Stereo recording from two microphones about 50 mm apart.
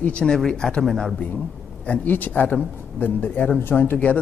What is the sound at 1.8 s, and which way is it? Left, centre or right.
A man's voice, left.